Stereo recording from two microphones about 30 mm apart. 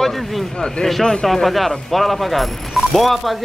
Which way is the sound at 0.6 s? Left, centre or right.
Left.